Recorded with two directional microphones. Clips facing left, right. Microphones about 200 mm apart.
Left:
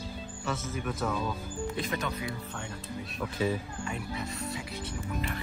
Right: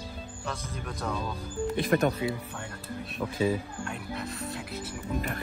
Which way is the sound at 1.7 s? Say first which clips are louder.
Right 10 dB; 55° right (ahead or behind).